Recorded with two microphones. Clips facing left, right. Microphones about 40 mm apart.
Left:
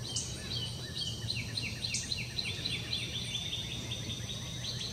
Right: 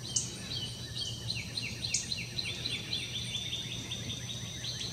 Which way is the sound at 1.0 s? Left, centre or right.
Centre.